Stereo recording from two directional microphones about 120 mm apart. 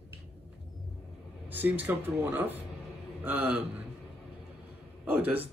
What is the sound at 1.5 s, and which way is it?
Speech, 15° right (ahead or behind).